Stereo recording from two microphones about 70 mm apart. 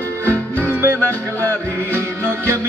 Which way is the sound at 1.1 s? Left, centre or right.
Left.